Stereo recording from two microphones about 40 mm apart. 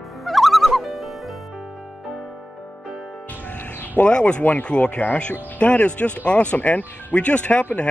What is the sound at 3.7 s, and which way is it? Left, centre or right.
Speech, left.